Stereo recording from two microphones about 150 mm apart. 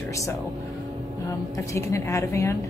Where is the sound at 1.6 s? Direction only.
20° left (ahead or behind).